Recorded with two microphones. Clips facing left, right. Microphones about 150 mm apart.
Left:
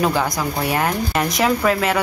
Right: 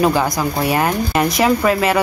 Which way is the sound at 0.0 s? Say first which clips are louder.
Right 3 dB; 5° right (ahead or behind).